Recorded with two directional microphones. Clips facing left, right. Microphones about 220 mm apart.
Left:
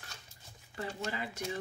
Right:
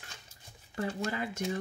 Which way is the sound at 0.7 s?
45° right (ahead or behind).